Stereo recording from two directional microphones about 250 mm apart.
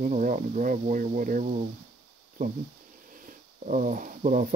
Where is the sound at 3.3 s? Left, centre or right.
Right.